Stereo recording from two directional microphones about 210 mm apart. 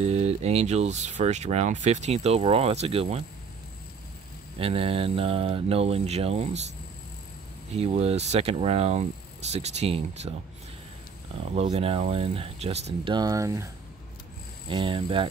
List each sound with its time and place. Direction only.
0.0 s speech: 30° right (ahead or behind)
4.6 s speech: 25° right (ahead or behind)
7.7 s speech: 30° right (ahead or behind)
11.5 s speech: 30° right (ahead or behind)
14.7 s speech: 25° right (ahead or behind)